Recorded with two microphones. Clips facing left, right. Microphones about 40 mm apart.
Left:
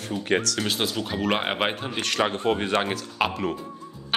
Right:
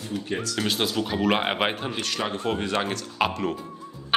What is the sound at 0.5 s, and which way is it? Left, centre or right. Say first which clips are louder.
Speech: right 1 dB; centre.